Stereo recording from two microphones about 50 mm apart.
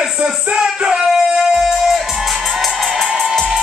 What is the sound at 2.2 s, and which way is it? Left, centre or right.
Music, centre.